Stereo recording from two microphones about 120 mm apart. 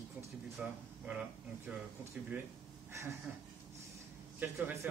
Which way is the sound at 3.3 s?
10° right (ahead or behind).